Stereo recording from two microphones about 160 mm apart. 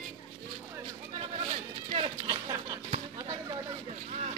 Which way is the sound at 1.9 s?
40° right (ahead or behind).